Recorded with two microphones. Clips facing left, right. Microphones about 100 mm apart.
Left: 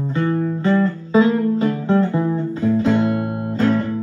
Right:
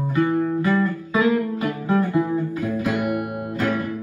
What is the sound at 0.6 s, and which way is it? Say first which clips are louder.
Guitar: left 3 dB; 25° left (ahead or behind).